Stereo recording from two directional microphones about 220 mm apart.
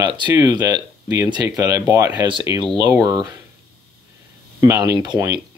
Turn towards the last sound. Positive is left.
turn(degrees=-15)  # may be behind; listen again after turning